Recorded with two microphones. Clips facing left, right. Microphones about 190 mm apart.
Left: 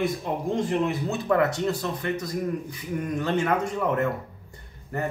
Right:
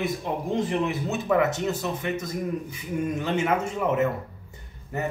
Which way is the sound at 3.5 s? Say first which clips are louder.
Even; 10° right (ahead or behind).